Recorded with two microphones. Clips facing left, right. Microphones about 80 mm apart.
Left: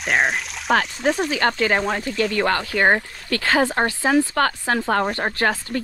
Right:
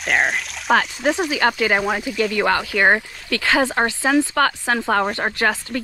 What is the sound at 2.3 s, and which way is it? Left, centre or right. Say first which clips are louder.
Speech: right 3 dB; right.